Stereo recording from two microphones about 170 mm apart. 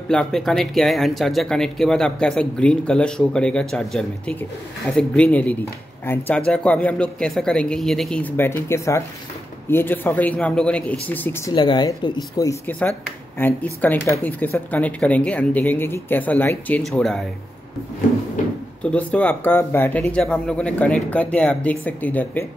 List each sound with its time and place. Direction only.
0.1 s speech: 5° left (ahead or behind)
11.5 s speech: 25° left (ahead or behind); by 17.2 s 5° left (ahead or behind)
18.4 s speech: 50° left (ahead or behind)
18.8 s speech: 5° left (ahead or behind)